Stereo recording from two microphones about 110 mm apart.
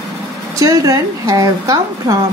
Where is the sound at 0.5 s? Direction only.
30° right (ahead or behind).